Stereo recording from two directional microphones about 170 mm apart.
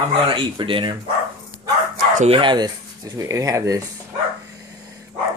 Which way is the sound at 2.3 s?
30° right (ahead or behind).